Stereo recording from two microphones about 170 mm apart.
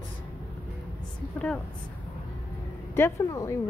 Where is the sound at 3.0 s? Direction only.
20° left (ahead or behind).